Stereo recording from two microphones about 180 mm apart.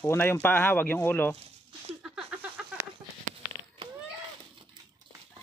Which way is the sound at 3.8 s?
30° right (ahead or behind).